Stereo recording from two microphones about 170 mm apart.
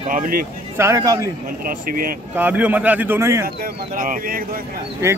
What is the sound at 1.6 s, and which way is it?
Speech, 55° right (ahead or behind).